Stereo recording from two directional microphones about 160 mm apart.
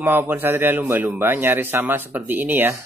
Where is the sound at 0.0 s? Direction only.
10° right (ahead or behind).